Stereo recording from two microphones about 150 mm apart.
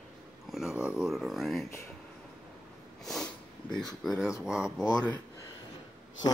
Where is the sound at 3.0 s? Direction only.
5° left (ahead or behind).